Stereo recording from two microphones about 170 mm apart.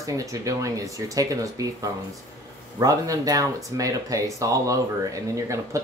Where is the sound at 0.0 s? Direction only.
20° right (ahead or behind).